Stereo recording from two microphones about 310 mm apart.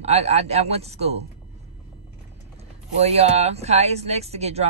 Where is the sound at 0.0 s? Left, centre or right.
Right.